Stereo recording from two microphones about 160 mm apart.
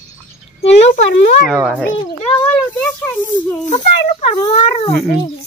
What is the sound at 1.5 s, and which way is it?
Speech, centre (ahead or behind).